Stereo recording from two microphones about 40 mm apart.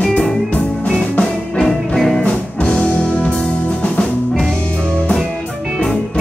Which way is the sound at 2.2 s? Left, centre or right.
Left.